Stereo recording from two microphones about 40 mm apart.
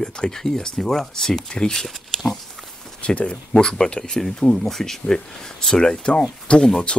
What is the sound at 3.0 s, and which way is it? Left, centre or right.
Speech, left.